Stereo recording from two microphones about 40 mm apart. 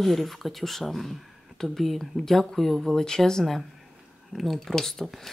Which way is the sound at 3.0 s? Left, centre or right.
Centre.